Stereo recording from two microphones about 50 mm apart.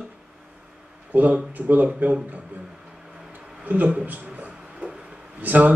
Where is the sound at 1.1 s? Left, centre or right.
Right.